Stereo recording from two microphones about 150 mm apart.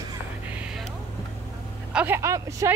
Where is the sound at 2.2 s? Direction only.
20° right (ahead or behind).